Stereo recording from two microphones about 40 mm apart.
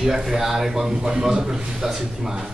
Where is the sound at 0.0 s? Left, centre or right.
Centre.